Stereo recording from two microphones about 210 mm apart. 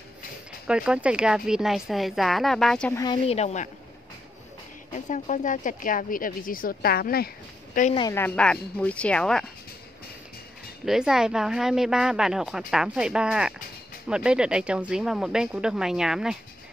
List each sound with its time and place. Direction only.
0.7 s a woman's voice: 5° right (ahead or behind)
2.9 s a woman's voice: 15° left (ahead or behind)
3.3 s a woman's voice: 30° left (ahead or behind)
4.9 s a woman's voice: 35° left (ahead or behind)
7.7 s a woman's voice: 35° left (ahead or behind)
8.0 s a woman's voice: 10° left (ahead or behind)
10.9 s a woman's voice: centre (ahead or behind)